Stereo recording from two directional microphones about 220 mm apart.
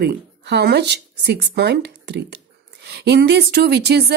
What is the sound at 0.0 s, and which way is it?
Speech, 50° right (ahead or behind).